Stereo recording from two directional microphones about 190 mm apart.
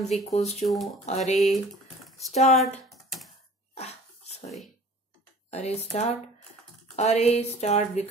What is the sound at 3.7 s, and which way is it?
Sneeze, 35° left (ahead or behind).